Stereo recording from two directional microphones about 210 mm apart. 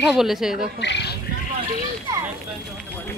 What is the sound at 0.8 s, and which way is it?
Speech, 55° left (ahead or behind).